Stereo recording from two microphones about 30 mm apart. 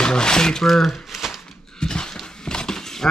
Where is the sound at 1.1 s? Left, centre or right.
Centre.